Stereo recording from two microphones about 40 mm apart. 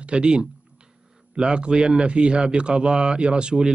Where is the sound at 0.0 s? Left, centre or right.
Right.